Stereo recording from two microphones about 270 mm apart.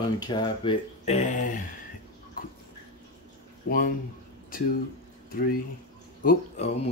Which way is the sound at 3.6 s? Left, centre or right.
Left.